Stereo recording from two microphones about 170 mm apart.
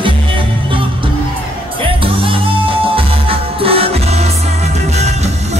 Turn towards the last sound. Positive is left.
turn(degrees=-40)  # may be behind; listen again after turning